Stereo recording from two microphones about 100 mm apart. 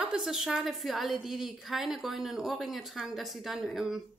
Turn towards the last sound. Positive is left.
turn(degrees=0)  # may be behind; listen again after turning